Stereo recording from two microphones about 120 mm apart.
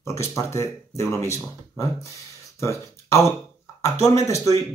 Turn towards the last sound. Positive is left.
turn(degrees=25)  # may be behind; listen again after turning